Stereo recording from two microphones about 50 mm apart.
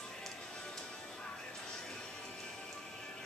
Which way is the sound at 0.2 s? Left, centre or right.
Centre.